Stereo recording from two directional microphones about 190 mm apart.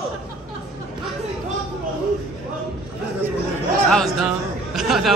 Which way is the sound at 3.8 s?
Centre (ahead or behind).